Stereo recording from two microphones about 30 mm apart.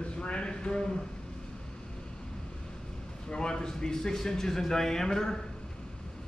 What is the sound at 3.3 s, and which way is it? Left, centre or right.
Speech, left.